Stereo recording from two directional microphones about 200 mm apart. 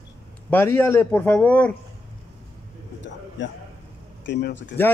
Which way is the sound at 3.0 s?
65° left (ahead or behind).